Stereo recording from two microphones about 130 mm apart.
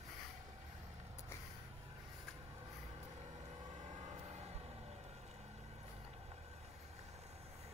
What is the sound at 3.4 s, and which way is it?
Siren, 35° right (ahead or behind).